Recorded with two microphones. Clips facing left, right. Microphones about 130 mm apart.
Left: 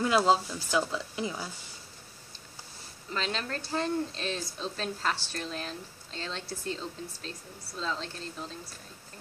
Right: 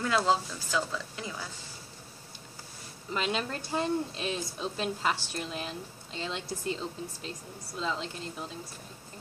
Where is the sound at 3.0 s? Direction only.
15° right (ahead or behind).